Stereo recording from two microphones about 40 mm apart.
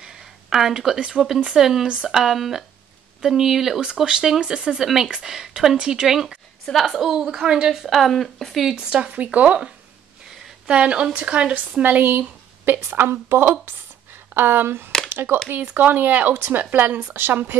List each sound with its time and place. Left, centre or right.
0.0 s a sound: centre
1.6 s speech: centre
4.8 s a woman's voice: centre
6.6 s a woman's voice: centre
7.1 s speech: centre
7.9 s speech: centre
8.9 s speech: right
10.7 s a woman's voice: right
11.8 s speech: right
15.0 s a sound: right
15.7 s speech: right
17.0 s speech: right